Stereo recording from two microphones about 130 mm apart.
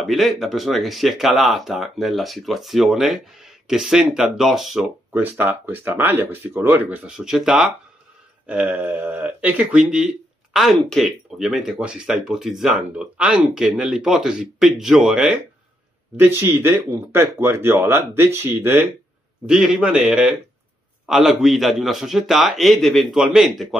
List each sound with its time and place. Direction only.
0.0 s speech: centre (ahead or behind)
5.1 s speech: 15° right (ahead or behind)
16.2 s speech: 20° right (ahead or behind)
19.4 s speech: 5° right (ahead or behind)